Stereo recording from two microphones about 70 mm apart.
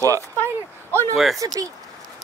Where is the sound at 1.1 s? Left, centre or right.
Centre.